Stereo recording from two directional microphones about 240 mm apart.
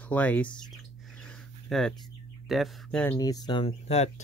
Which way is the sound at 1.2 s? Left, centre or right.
Centre.